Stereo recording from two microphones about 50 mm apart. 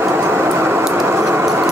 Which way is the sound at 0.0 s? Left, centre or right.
Right.